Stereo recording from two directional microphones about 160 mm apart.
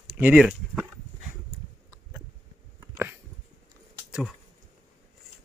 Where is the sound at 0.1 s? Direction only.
10° right (ahead or behind).